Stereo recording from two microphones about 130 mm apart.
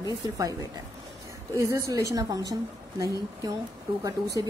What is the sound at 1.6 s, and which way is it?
Speech, 25° right (ahead or behind).